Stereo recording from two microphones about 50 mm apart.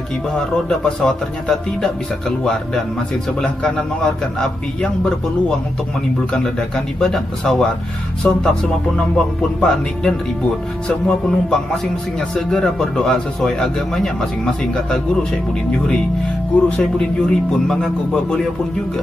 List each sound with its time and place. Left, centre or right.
0.4 s speech: centre
7.0 s speech: centre
11.2 s speech: centre
16.6 s speech: centre